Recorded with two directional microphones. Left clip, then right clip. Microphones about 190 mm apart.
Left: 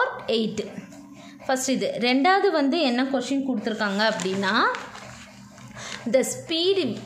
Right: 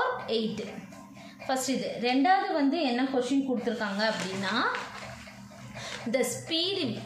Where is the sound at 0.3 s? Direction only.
50° left (ahead or behind).